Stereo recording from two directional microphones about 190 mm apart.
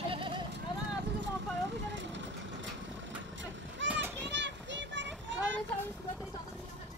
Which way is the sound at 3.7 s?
75° right (ahead or behind).